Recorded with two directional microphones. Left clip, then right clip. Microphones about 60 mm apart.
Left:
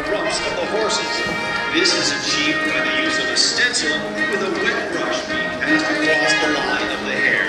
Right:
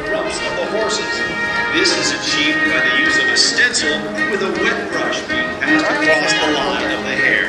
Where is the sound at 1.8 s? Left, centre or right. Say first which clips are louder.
Left 1 dB; centre.